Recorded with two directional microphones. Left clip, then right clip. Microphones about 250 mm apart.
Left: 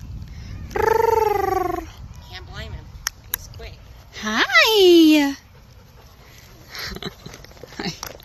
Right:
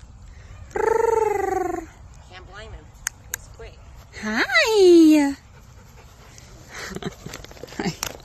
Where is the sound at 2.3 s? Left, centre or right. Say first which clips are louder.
Left 4 dB; left.